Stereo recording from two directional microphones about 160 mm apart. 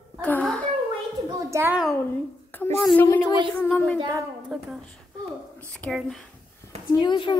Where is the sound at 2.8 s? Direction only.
10° left (ahead or behind).